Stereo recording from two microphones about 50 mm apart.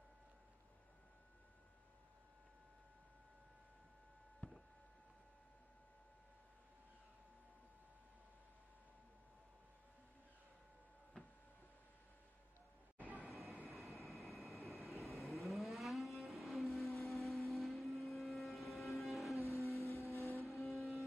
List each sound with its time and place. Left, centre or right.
13.0 s a sound: right
13.3 s train: centre
13.7 s vehicle: centre
19.3 s vehicle: left
20.6 s music: centre